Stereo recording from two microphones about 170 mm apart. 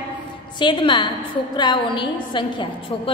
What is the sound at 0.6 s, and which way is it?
A woman's voice, 30° left (ahead or behind).